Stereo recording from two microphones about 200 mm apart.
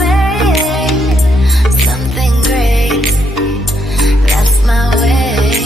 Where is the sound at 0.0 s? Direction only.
Centre (ahead or behind).